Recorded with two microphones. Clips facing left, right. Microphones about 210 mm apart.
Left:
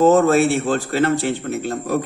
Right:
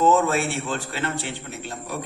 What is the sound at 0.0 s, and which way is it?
A man's voice, 45° left (ahead or behind).